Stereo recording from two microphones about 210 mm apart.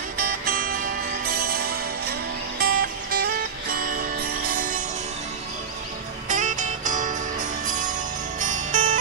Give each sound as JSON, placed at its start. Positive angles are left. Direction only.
{"t": 0.2, "sound": "music", "side_deg": -45}
{"t": 3.7, "sound": "jingle bell", "side_deg": -45}
{"t": 6.2, "sound": "music", "side_deg": -35}